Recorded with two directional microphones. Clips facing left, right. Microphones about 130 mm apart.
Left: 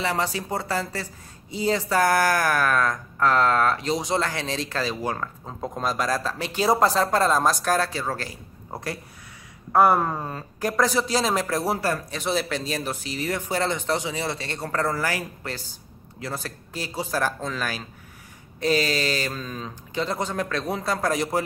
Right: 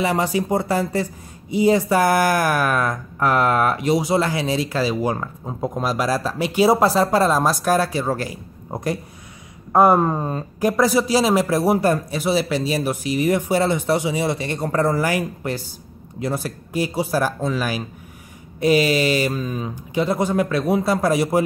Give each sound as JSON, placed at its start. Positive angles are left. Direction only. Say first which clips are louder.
{"t": 0.0, "sound": "speech", "louder": "right 6 dB", "side_deg": -15}
{"t": 10.7, "sound": "speech", "louder": "right 5 dB", "side_deg": -10}
{"t": 12.2, "sound": "speech", "louder": "right 6 dB", "side_deg": -5}